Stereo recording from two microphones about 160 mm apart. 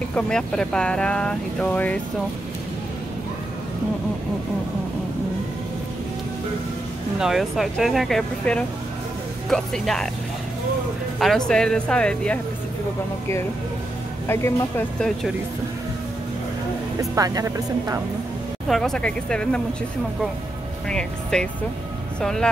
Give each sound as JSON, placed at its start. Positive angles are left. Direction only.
{"t": 0.1, "sound": "speech", "side_deg": 5}
{"t": 7.2, "sound": "speech", "side_deg": 0}
{"t": 11.1, "sound": "speech", "side_deg": 0}
{"t": 14.2, "sound": "speech", "side_deg": 15}
{"t": 15.0, "sound": "speech", "side_deg": 0}
{"t": 17.0, "sound": "speech", "side_deg": -20}
{"t": 18.7, "sound": "speech", "side_deg": 5}
{"t": 20.9, "sound": "speech", "side_deg": 5}